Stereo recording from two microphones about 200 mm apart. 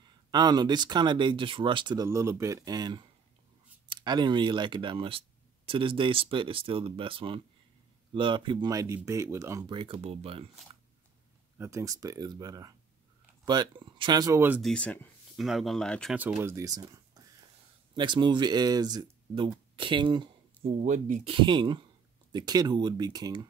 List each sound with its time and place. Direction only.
0.3 s speech: 20° right (ahead or behind)
11.5 s speech: 15° right (ahead or behind)
14.6 s speech: 5° left (ahead or behind)
16.2 s speech: 10° right (ahead or behind)
19.7 s a sound: 25° right (ahead or behind)
20.8 s speech: 35° right (ahead or behind); by 23.4 s 20° right (ahead or behind)